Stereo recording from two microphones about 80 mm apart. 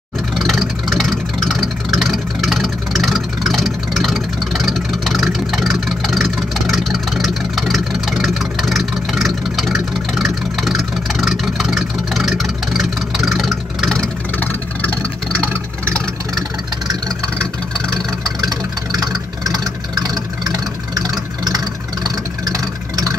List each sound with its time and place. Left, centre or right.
0.4 s vehicle: centre
19.6 s vehicle: right